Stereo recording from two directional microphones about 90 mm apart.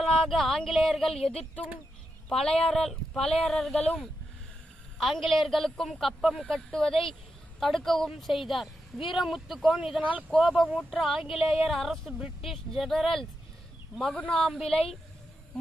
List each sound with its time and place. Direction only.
0.0 s speech: 5° left (ahead or behind)
9.9 s speech: 15° right (ahead or behind)
10.7 s speech: 5° right (ahead or behind)